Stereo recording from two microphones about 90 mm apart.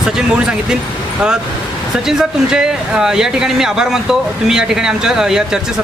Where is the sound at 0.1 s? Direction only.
10° right (ahead or behind).